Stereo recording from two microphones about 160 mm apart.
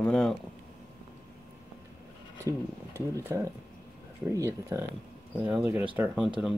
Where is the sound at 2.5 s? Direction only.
20° right (ahead or behind).